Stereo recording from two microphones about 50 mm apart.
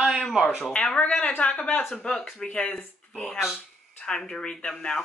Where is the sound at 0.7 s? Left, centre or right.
Centre.